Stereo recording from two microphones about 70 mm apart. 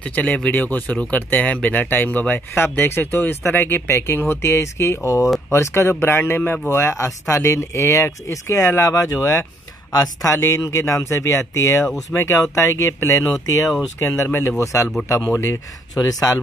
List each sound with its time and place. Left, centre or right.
0.0 s speech: left
6.7 s speech: left
13.9 s speech: left
14.6 s speech: left
15.9 s speech: left